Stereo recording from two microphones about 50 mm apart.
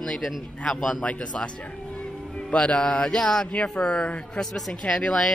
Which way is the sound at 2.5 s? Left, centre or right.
Left.